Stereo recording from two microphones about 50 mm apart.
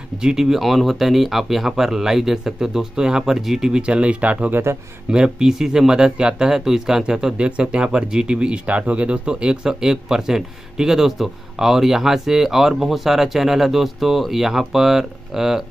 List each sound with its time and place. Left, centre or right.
0.2 s speech: centre; by 4.5 s right
4.7 s speech: right
5.1 s speech: centre